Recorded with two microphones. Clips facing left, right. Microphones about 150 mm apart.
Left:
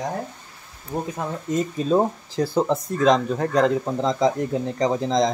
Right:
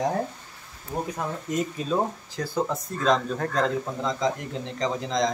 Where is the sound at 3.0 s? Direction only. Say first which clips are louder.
Left 4 dB; 15° left (ahead or behind).